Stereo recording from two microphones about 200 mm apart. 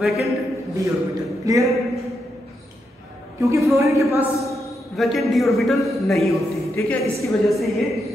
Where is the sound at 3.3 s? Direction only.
15° right (ahead or behind).